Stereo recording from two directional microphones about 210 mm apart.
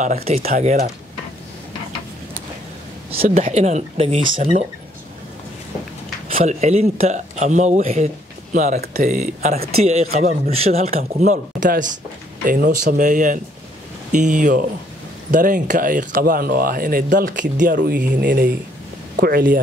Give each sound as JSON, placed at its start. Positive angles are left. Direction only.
{"t": 0.0, "sound": "speech", "side_deg": -35}
{"t": 3.1, "sound": "speech", "side_deg": -30}
{"t": 6.3, "sound": "speech", "side_deg": -30}